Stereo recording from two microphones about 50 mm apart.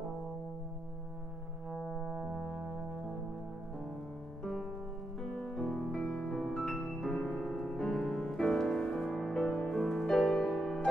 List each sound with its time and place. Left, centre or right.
2.0 s brass instrument: right
5.6 s music: centre
5.9 s music: centre